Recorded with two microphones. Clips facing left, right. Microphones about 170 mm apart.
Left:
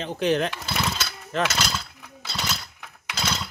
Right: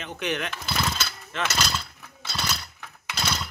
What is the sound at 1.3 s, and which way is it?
Speech, 40° left (ahead or behind).